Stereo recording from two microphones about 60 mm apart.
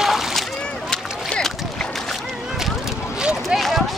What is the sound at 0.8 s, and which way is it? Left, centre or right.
Rowboat, centre.